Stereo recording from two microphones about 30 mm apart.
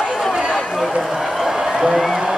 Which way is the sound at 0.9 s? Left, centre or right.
Centre.